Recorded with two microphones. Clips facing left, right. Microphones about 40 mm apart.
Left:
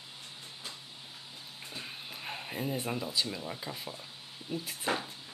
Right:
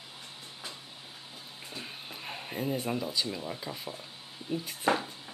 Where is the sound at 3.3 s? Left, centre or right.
Centre.